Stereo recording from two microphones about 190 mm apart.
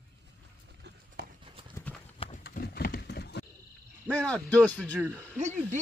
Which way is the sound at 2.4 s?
55° left (ahead or behind).